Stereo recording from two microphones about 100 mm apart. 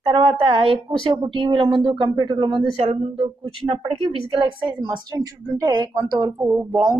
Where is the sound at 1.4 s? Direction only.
55° right (ahead or behind).